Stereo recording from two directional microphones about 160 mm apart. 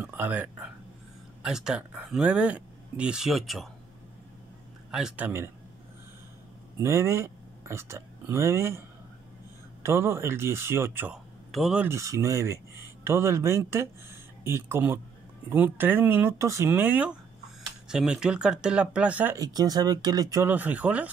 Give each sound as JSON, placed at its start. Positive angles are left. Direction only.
{"t": 0.0, "sound": "speech", "side_deg": -10}
{"t": 4.9, "sound": "speech", "side_deg": -5}
{"t": 6.8, "sound": "speech", "side_deg": -15}
{"t": 9.8, "sound": "speech", "side_deg": -15}
{"t": 11.5, "sound": "speech", "side_deg": -5}
{"t": 11.9, "sound": "speech", "side_deg": -20}
{"t": 19.3, "sound": "speech", "side_deg": -25}